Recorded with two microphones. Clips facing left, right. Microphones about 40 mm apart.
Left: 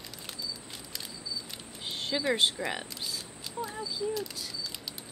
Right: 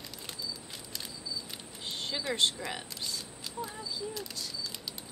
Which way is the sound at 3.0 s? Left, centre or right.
Centre.